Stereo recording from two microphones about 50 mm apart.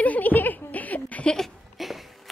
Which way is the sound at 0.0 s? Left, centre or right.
Left.